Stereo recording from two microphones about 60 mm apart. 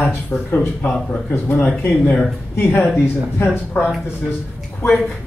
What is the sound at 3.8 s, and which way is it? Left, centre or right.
Speech, left.